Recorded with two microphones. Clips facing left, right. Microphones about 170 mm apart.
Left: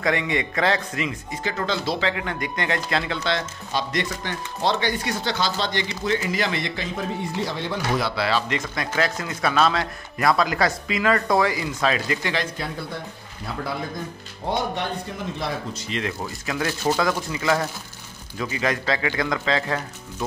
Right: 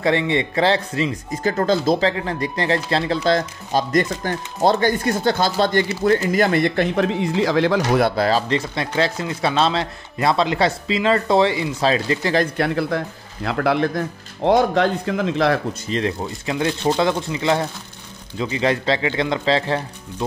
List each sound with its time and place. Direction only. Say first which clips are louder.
0.0 s speech: right 5 dB; 30° right (ahead or behind)
1.4 s speech: right 8 dB; 45° right (ahead or behind)
3.3 s speech: right 7 dB; 40° right (ahead or behind); by 8.0 s 90° right
8.0 s speech: right 6 dB; 40° right (ahead or behind)
12.5 s speech: right 10 dB; 80° right
15.9 s speech: right 6 dB; 30° right (ahead or behind)